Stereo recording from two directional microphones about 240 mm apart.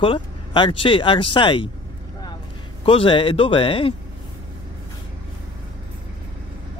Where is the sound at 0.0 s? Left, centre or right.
Left.